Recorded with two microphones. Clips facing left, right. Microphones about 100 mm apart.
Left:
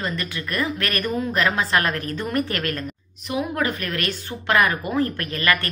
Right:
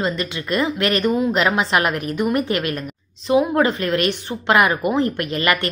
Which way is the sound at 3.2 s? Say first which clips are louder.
Right 8 dB; 25° right (ahead or behind).